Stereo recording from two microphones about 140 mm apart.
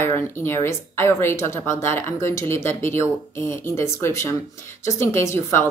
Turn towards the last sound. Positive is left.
turn(degrees=20)  # may be behind; listen again after turning